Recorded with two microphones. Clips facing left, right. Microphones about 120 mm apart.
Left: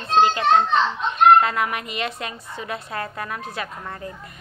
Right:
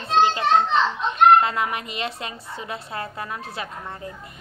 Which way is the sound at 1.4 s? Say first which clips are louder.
Left 1 dB; 25° right (ahead or behind).